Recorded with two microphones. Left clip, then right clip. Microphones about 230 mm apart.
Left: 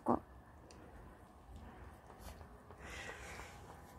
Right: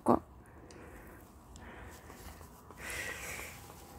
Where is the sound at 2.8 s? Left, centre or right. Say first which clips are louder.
Right 9 dB; right.